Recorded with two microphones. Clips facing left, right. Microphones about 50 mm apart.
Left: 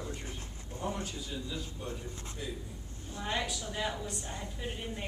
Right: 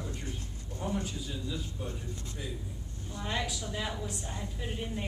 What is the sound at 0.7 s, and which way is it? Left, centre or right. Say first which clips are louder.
Speech: right 2 dB; centre.